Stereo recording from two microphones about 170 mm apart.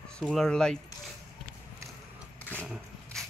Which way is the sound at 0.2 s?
5° left (ahead or behind).